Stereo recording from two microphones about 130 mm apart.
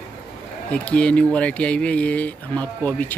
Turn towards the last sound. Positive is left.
turn(degrees=10)  # may be behind; listen again after turning